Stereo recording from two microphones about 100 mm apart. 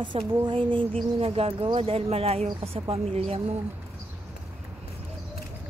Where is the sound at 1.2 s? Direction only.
70° right (ahead or behind); by 2.5 s 90° right.